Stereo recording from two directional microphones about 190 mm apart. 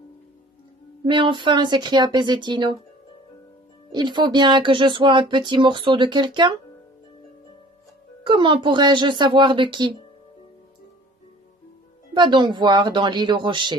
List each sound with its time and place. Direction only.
1.0 s speech: 25° right (ahead or behind)
3.9 s speech: 25° right (ahead or behind)
8.3 s speech: 25° right (ahead or behind)
12.2 s speech: 25° right (ahead or behind)